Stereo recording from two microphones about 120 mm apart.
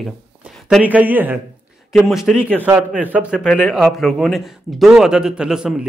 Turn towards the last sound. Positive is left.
turn(degrees=-5)  # may be behind; listen again after turning